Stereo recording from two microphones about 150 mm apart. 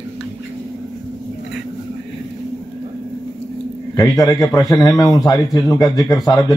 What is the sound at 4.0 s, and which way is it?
A man's voice, 25° left (ahead or behind).